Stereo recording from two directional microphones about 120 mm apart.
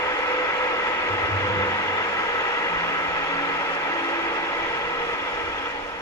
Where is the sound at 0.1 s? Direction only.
25° left (ahead or behind).